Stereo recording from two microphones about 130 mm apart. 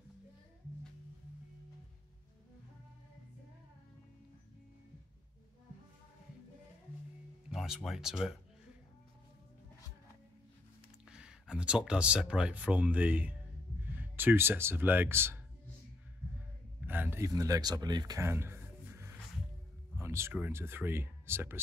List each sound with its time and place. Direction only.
7.5 s speech: 5° right (ahead or behind)
11.1 s speech: 5° right (ahead or behind)
16.8 s speech: 15° right (ahead or behind); by 18.2 s 30° right (ahead or behind)
18.2 s music: 20° right (ahead or behind)
20.0 s a sound: 20° right (ahead or behind)
20.3 s speech: 15° right (ahead or behind)